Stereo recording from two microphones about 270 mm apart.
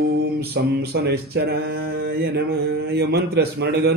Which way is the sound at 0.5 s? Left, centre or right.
Right.